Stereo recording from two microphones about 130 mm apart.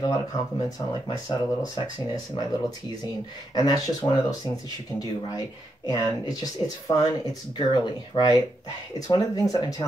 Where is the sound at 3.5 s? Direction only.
30° left (ahead or behind).